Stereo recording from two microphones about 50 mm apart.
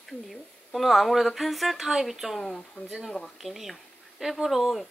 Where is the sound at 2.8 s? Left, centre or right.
Left.